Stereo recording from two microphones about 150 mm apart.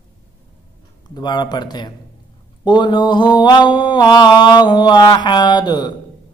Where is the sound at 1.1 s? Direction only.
30° left (ahead or behind).